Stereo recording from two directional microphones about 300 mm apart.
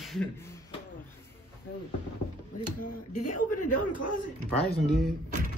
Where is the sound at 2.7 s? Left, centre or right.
Left.